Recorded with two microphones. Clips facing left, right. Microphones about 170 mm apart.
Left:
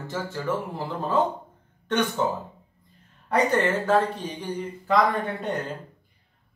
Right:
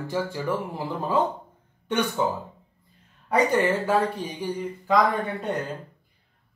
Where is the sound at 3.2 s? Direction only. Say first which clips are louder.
Right 1 dB; 10° right (ahead or behind).